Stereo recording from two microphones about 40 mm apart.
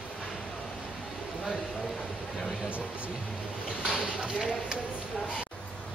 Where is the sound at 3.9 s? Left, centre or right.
Centre.